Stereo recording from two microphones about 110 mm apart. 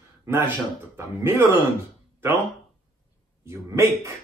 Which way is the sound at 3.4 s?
25° right (ahead or behind).